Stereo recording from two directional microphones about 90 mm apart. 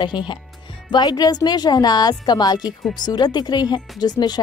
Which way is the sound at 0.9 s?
50° left (ahead or behind).